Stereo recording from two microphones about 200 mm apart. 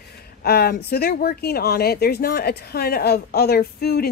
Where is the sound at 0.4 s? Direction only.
50° left (ahead or behind).